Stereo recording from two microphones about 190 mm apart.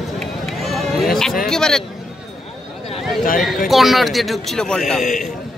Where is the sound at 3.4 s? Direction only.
Centre (ahead or behind).